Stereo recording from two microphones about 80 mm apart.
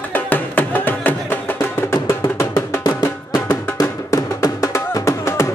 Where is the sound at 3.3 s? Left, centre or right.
Left.